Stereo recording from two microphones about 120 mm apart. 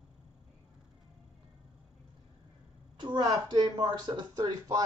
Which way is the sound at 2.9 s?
40° right (ahead or behind).